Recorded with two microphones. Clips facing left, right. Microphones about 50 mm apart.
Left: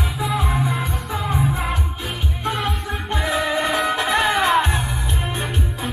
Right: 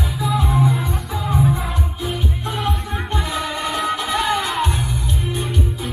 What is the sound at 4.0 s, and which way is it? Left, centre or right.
Music, left.